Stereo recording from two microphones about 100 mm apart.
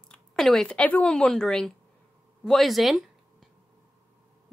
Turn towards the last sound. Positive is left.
turn(degrees=0)  # may be behind; listen again after turning